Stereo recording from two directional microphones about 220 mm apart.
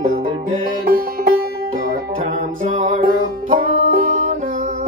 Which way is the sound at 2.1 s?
30° right (ahead or behind).